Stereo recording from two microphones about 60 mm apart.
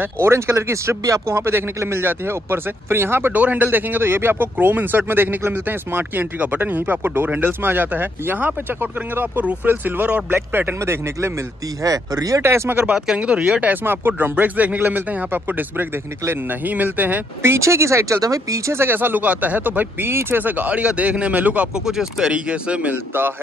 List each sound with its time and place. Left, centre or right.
0.0 s speech: right
1.3 s speech: right
3.3 s speech: right
10.5 s speech: right
10.8 s speech: right
11.8 s speech: right
12.4 s speech: right
12.9 s speech: centre
13.8 s speech: right
17.4 s speech: right
18.2 s speech: right
18.7 s speech: right
21.7 s speech: centre